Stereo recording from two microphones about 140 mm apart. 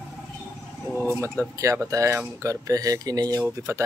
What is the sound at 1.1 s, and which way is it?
Speech, 20° right (ahead or behind).